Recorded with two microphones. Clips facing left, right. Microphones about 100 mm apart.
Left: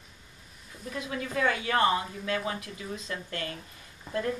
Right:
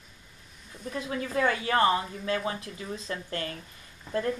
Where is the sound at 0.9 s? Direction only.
30° right (ahead or behind).